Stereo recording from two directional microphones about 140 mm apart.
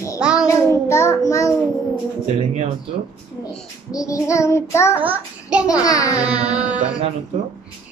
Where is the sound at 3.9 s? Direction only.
25° left (ahead or behind).